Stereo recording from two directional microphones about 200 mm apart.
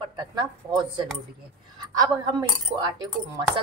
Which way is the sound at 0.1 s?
20° right (ahead or behind).